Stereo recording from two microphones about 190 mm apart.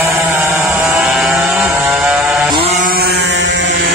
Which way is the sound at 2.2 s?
Centre (ahead or behind).